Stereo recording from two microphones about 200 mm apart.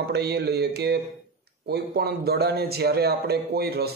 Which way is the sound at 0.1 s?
55° right (ahead or behind).